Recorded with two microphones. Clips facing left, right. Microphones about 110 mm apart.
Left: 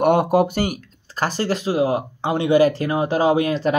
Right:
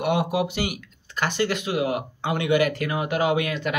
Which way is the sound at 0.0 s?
45° left (ahead or behind).